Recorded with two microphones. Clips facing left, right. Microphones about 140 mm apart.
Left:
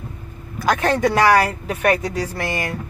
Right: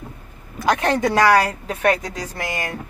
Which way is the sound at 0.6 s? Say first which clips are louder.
Even; 20° right (ahead or behind).